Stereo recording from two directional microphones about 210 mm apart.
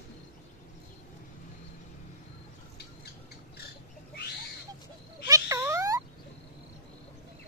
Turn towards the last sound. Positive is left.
turn(degrees=-15)  # may be behind; listen again after turning